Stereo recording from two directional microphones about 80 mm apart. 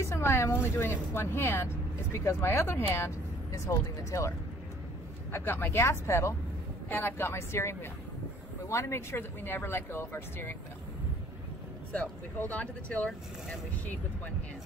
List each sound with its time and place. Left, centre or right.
0.0 s speech: left
3.5 s speech: left
5.3 s speech: left
6.9 s speech: left
11.9 s speech: centre